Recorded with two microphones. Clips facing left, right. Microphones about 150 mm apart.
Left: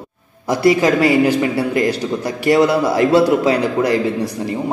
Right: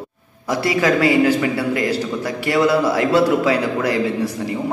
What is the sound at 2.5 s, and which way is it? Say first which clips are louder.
A man's voice: left 1 dB; 25° left (ahead or behind).